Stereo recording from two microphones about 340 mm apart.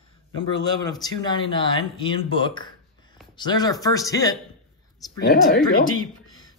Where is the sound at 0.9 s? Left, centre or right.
Centre.